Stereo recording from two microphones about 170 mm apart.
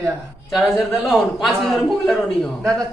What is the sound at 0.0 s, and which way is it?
A man's voice, 5° right (ahead or behind).